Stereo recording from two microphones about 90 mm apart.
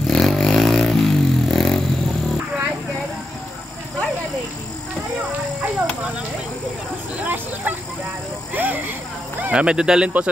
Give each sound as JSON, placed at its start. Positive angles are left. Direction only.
{"t": 0.0, "sound": "vehicle", "side_deg": 5}
{"t": 7.2, "sound": "a sound", "side_deg": -15}
{"t": 9.4, "sound": "speech", "side_deg": -15}